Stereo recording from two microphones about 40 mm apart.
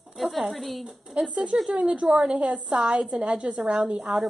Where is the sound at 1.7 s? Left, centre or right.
Right.